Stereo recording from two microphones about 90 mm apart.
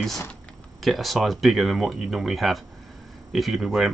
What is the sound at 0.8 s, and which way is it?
Speech, centre (ahead or behind).